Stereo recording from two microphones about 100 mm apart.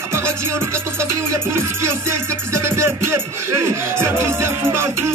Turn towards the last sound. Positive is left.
turn(degrees=-25)  # may be behind; listen again after turning